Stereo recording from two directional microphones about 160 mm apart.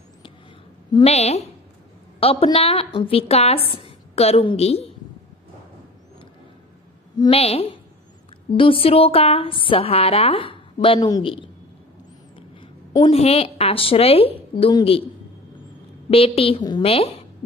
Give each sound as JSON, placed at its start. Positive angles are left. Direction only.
{"t": 1.0, "sound": "a woman's voice", "side_deg": 40}
{"t": 7.2, "sound": "a woman's voice", "side_deg": 35}
{"t": 13.1, "sound": "a woman's voice", "side_deg": 40}
{"t": 16.1, "sound": "a woman's voice", "side_deg": 40}